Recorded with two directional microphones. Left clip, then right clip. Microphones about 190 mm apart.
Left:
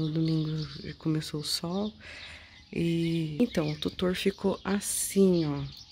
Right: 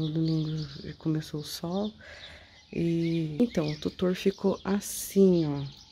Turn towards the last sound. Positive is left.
turn(degrees=0)  # may be behind; listen again after turning